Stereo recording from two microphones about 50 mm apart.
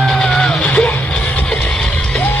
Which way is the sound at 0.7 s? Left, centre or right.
Left.